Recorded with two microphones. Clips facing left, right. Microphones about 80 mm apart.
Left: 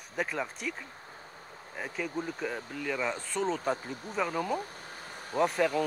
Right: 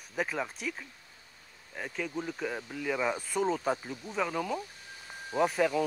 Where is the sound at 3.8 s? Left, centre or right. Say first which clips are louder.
Left 1 dB; left.